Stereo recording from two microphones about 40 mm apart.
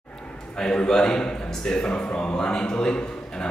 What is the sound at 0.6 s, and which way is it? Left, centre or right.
A man's voice, centre.